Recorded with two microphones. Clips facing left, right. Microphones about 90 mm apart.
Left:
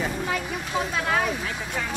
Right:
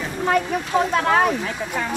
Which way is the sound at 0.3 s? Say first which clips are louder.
Right 8 dB; 55° right (ahead or behind).